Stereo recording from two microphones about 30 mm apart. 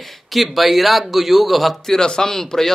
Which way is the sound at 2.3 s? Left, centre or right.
Centre.